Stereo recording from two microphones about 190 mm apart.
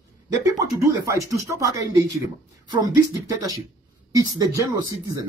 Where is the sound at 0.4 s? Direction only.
15° right (ahead or behind).